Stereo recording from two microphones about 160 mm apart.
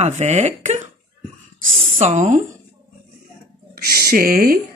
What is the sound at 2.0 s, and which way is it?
Speech, 45° right (ahead or behind).